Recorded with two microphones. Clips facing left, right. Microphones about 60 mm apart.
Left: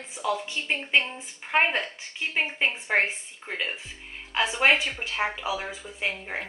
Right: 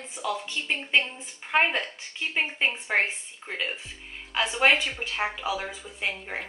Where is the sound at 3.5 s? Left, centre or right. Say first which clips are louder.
Even; left.